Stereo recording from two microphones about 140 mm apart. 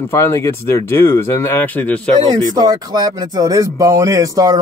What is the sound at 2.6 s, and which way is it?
Speech, 30° right (ahead or behind).